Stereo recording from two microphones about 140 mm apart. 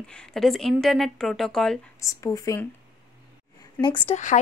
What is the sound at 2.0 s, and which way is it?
Speech, 25° left (ahead or behind).